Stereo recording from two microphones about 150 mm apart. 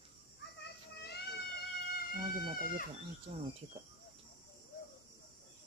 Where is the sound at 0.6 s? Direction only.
90° left.